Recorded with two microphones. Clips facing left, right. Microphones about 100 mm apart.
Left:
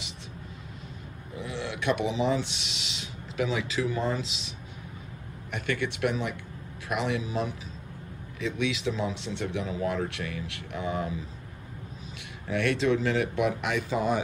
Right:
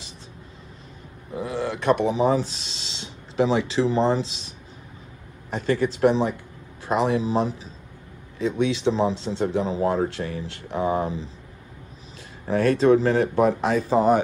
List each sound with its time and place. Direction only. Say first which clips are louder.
1.4 s speech: right 6 dB; 40° right (ahead or behind)
5.5 s a man's voice: right 8 dB; 30° right (ahead or behind)
12.4 s a man's voice: right 8 dB; 35° right (ahead or behind)